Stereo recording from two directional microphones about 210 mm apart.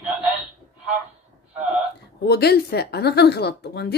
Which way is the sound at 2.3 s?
50° left (ahead or behind).